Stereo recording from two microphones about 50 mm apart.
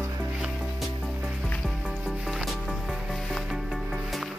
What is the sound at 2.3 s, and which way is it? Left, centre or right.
Music, centre.